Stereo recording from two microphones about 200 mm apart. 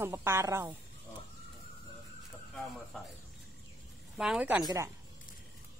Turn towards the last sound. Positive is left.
turn(degrees=-20)  # may be behind; listen again after turning